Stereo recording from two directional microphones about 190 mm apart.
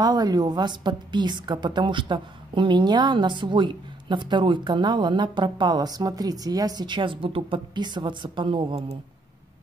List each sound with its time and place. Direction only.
0.0 s a woman's voice: 20° right (ahead or behind)